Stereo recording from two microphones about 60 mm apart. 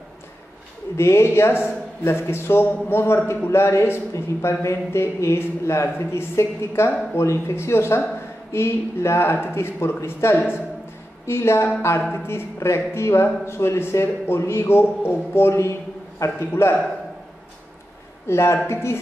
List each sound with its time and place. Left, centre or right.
0.9 s a man's voice: left
9.3 s a man's voice: left
18.3 s a man's voice: left